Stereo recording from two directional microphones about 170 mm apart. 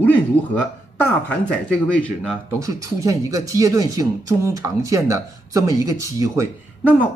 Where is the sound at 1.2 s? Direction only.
5° left (ahead or behind).